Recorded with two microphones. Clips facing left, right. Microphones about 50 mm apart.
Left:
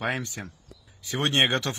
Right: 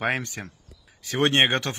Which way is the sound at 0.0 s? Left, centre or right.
Right.